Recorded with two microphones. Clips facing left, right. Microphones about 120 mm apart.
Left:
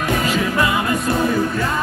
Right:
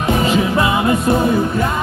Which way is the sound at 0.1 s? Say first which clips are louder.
Right 5 dB; 25° right (ahead or behind).